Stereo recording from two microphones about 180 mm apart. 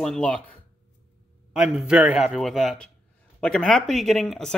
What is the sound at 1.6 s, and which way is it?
Speech, 5° right (ahead or behind).